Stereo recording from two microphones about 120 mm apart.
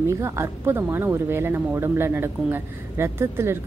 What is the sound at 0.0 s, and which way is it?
Speech, 25° right (ahead or behind).